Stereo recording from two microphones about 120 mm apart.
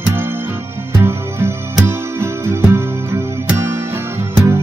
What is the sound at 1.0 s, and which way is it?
Music, 20° right (ahead or behind).